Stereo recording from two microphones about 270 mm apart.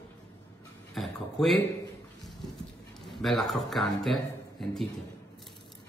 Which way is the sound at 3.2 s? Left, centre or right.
Centre.